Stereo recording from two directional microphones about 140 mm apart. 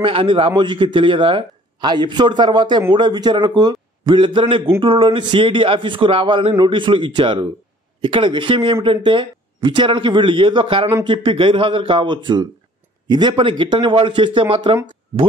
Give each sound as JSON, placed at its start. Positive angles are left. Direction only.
{"t": 0.0, "sound": "a man's voice", "side_deg": -40}